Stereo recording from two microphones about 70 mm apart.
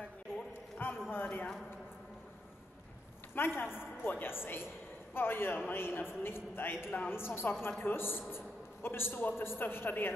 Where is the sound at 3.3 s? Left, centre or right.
Left.